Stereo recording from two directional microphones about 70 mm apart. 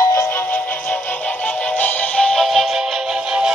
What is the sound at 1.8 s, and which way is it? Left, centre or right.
Music, centre.